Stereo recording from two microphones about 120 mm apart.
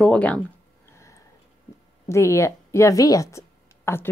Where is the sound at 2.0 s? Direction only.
25° left (ahead or behind).